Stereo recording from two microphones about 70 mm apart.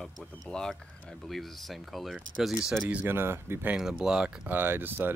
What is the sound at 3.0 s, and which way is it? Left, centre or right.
Speech, right.